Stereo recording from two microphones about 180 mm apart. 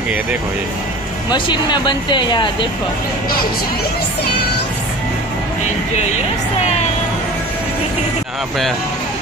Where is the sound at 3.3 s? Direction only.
55° left (ahead or behind).